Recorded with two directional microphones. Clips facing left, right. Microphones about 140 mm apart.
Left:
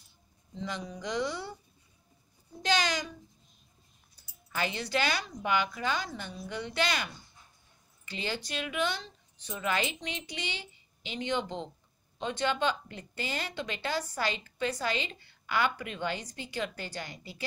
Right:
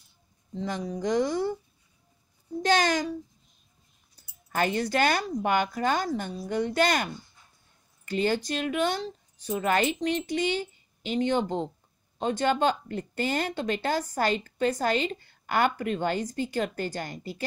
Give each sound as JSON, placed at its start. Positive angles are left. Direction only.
{"t": 0.6, "sound": "a woman's voice", "side_deg": -45}
{"t": 2.6, "sound": "a woman's voice", "side_deg": -45}
{"t": 4.5, "sound": "a woman's voice", "side_deg": -50}